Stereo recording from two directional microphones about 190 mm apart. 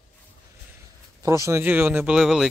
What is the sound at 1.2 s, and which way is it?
Speech, 15° right (ahead or behind).